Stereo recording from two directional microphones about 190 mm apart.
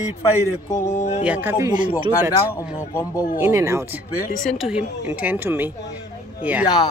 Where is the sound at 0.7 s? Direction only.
15° left (ahead or behind).